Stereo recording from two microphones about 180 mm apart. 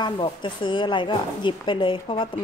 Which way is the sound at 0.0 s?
25° left (ahead or behind).